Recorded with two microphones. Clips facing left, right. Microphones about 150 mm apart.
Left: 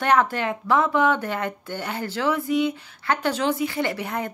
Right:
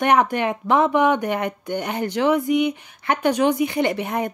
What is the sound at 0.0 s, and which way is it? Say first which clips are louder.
Speech: right 3 dB; 20° right (ahead or behind).